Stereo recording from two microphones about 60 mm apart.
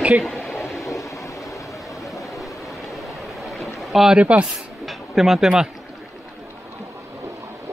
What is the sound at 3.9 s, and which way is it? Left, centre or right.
Speech, centre.